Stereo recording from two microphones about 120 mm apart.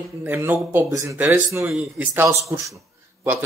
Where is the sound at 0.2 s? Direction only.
15° right (ahead or behind).